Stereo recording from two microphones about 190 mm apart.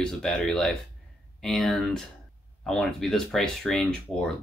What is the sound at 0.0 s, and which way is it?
Speech, 5° left (ahead or behind).